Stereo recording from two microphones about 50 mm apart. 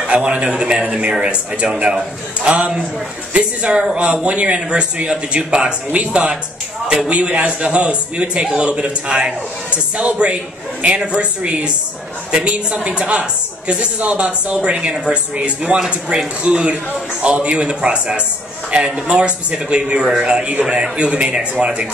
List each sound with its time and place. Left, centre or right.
0.0 s a man's voice: right